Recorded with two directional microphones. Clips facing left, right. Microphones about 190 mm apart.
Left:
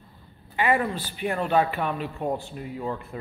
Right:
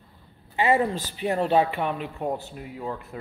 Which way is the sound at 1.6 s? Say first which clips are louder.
Right 1 dB; 20° right (ahead or behind).